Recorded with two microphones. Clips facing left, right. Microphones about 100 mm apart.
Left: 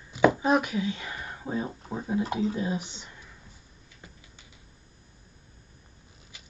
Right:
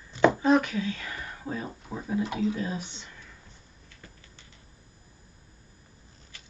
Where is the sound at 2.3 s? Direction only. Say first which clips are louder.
Even; 35° left (ahead or behind).